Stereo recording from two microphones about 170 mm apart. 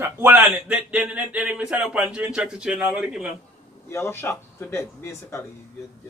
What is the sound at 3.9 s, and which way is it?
Speech, 15° left (ahead or behind).